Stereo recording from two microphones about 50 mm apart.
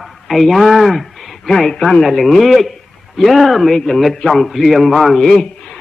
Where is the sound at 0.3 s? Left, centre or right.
Centre.